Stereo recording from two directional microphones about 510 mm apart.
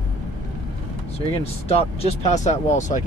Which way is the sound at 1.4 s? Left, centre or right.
Centre.